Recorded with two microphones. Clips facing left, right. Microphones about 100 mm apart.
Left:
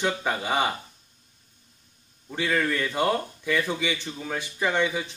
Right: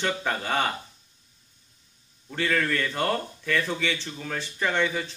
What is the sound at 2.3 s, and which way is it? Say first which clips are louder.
A man's voice: even; 10° left (ahead or behind).